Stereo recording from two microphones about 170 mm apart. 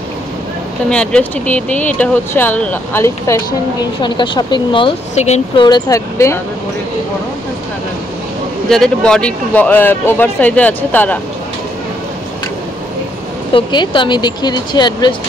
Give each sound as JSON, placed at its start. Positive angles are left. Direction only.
{"t": 0.8, "sound": "speech", "side_deg": 5}
{"t": 4.0, "sound": "speech", "side_deg": 25}
{"t": 5.6, "sound": "speech", "side_deg": 20}
{"t": 8.6, "sound": "speech", "side_deg": 5}
{"t": 13.5, "sound": "speech", "side_deg": 30}